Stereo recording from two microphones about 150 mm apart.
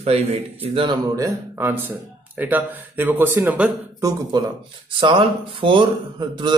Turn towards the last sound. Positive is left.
turn(degrees=-30)  # may be behind; listen again after turning